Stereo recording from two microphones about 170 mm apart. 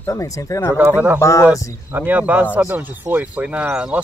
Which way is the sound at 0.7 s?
10° right (ahead or behind).